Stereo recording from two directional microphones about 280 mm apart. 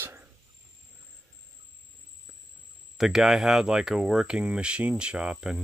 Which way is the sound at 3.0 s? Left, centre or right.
Centre.